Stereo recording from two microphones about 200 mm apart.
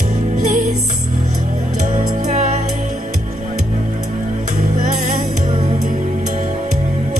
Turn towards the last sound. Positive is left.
turn(degrees=-35)  # may be behind; listen again after turning